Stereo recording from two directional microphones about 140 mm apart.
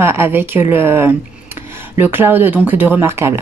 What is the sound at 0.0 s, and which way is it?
Speech, 15° right (ahead or behind).